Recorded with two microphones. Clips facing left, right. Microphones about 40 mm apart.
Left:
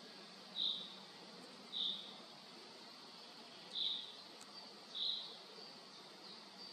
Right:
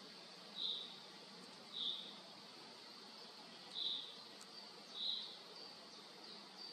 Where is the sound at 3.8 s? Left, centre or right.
Left.